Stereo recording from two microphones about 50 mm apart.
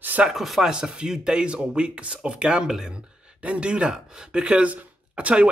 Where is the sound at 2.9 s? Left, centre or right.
Right.